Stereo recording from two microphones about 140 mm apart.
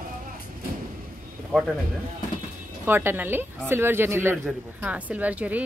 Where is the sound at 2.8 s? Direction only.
15° right (ahead or behind).